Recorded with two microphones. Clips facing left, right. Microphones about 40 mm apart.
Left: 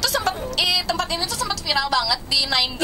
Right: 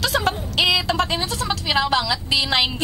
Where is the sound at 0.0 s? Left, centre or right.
Right.